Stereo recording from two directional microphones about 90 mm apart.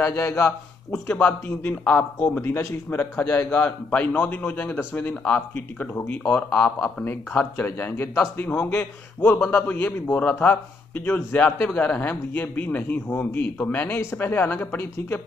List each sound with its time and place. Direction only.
0.0 s a man's voice: 35° left (ahead or behind)
1.0 s a man's voice: 15° left (ahead or behind)
3.3 s a man's voice: 10° left (ahead or behind)
6.3 s a man's voice: 10° left (ahead or behind)
7.3 s a man's voice: 20° left (ahead or behind)